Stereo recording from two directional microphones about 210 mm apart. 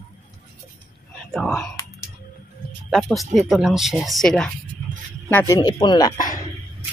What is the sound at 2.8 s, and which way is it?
Speech, centre (ahead or behind).